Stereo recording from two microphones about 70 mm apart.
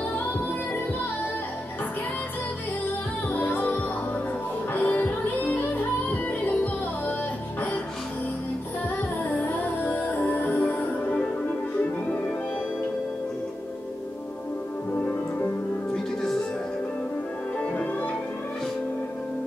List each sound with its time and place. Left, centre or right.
3.3 s music: left
4.7 s music: left
9.3 s music: left
15.9 s music: centre